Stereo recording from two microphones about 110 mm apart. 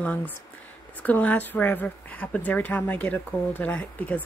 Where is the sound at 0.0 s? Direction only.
15° left (ahead or behind).